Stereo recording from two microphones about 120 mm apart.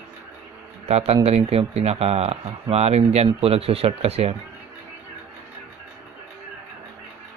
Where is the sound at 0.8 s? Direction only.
60° right (ahead or behind).